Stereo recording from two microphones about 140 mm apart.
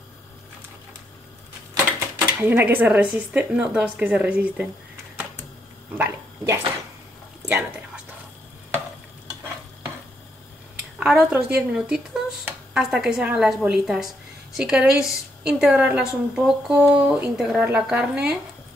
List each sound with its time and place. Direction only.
2.4 s speech: 15° right (ahead or behind)
5.9 s speech: 15° right (ahead or behind)
7.4 s a sound: 10° right (ahead or behind)
11.0 s speech: 5° right (ahead or behind)
17.4 s speech: 5° right (ahead or behind)